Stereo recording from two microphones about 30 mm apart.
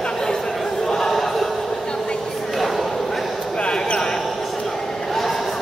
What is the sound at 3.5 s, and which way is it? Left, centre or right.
Basketball bounce, left.